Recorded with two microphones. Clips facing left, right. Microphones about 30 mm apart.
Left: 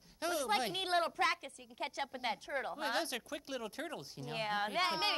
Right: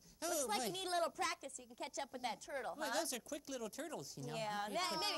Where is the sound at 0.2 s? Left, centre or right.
Left.